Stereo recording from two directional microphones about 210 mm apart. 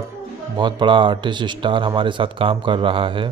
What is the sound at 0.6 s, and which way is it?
Speech, 20° right (ahead or behind).